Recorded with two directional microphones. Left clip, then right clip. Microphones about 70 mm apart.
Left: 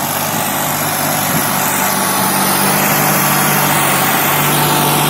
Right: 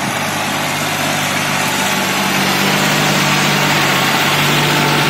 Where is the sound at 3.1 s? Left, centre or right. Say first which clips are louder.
Even; right.